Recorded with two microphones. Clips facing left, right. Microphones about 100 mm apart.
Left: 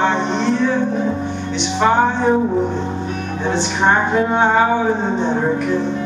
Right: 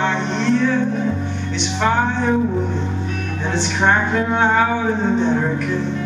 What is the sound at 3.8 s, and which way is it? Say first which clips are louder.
Music: left 2 dB; 15° left (ahead or behind).